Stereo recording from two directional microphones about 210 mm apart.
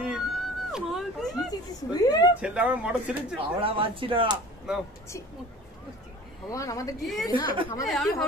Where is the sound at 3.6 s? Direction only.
25° right (ahead or behind).